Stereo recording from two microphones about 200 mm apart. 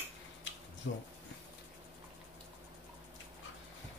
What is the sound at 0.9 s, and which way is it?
Speech, 60° left (ahead or behind).